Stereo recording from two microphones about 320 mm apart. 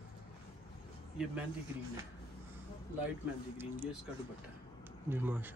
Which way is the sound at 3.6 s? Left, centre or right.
Centre.